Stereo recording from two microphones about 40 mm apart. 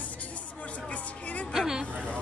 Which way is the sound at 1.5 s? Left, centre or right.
Centre.